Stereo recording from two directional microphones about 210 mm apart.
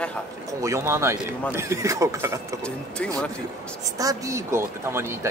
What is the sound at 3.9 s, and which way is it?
Speech, 15° right (ahead or behind).